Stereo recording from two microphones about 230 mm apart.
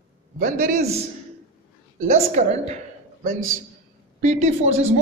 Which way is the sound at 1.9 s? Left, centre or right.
Right.